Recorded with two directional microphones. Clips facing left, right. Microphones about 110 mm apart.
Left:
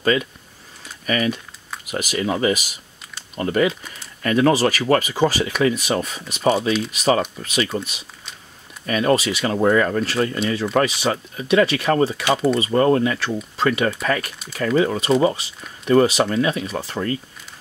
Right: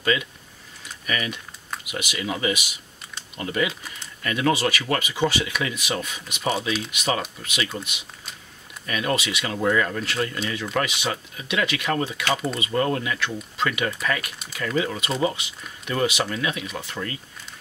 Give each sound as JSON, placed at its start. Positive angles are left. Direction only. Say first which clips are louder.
{"t": 0.0, "sound": "speech", "louder": "left 5 dB", "side_deg": 40}